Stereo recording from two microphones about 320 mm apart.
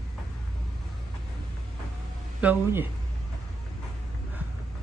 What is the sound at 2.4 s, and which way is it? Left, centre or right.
Speech, centre.